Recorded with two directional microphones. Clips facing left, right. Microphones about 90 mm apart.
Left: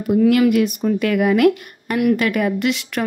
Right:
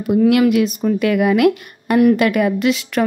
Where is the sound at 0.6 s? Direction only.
20° right (ahead or behind).